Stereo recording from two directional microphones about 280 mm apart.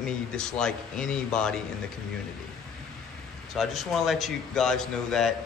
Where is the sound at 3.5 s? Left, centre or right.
Centre.